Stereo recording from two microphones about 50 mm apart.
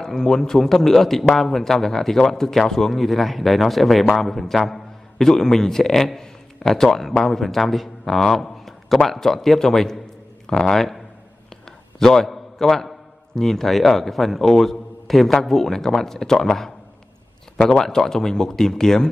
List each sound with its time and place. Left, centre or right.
0.0 s a man's voice: centre
12.0 s a man's voice: centre